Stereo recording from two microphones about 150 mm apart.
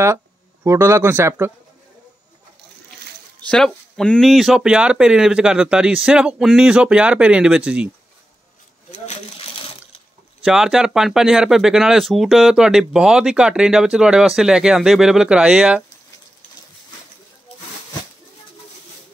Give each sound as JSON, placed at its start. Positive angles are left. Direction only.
{"t": 0.7, "sound": "speech", "side_deg": -15}
{"t": 3.4, "sound": "speech", "side_deg": 5}
{"t": 10.4, "sound": "speech", "side_deg": -5}